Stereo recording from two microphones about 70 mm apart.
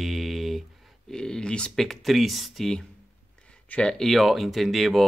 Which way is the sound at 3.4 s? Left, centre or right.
Centre.